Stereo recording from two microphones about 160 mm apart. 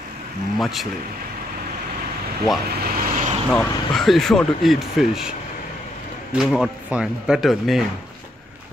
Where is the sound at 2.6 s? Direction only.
75° right (ahead or behind).